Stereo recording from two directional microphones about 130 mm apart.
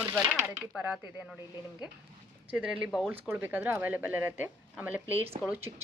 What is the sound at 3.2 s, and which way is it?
Speech, 15° right (ahead or behind).